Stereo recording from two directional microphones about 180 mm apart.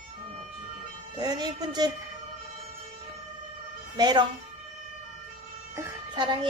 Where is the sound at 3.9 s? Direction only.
25° right (ahead or behind).